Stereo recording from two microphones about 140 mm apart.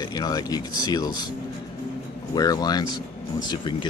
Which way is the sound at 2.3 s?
25° left (ahead or behind).